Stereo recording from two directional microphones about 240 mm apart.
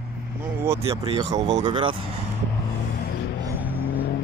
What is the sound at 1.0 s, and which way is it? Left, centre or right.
Speech, right.